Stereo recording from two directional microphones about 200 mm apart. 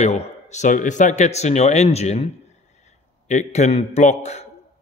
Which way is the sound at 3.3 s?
35° left (ahead or behind).